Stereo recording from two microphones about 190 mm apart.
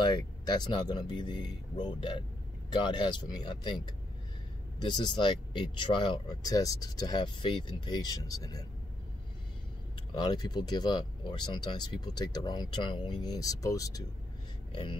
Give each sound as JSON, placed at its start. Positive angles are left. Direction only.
{"t": 0.0, "sound": "speech", "side_deg": 20}
{"t": 4.7, "sound": "speech", "side_deg": 25}
{"t": 10.3, "sound": "speech", "side_deg": 20}
{"t": 14.7, "sound": "a sound", "side_deg": 25}